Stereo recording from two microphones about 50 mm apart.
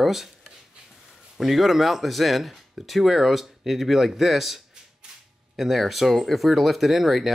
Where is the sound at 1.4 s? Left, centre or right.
Centre.